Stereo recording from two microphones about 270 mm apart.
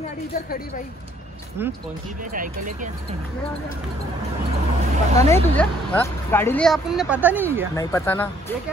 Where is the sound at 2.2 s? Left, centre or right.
Right.